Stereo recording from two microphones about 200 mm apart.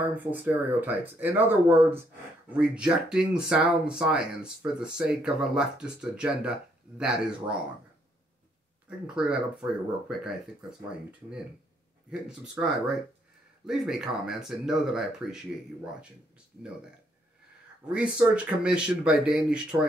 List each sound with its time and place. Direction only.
0.0 s speech: 10° right (ahead or behind)
9.0 s speech: 5° right (ahead or behind)
18.3 s speech: 5° right (ahead or behind)